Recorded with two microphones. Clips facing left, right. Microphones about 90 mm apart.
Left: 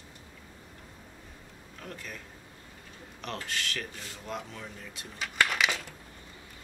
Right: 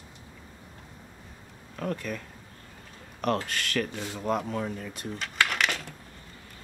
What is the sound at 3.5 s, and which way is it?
Speech, 55° right (ahead or behind).